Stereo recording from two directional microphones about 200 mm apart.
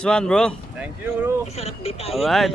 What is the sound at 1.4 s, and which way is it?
Speech, 30° left (ahead or behind).